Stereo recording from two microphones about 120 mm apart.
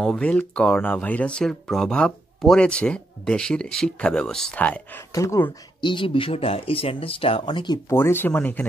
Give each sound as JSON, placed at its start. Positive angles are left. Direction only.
{"t": 0.0, "sound": "speech", "side_deg": 5}
{"t": 5.1, "sound": "speech", "side_deg": 25}
{"t": 5.8, "sound": "speech", "side_deg": 40}
{"t": 7.9, "sound": "speech", "side_deg": 20}